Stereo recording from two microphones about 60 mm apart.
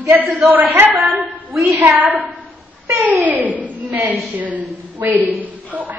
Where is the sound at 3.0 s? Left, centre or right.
Right.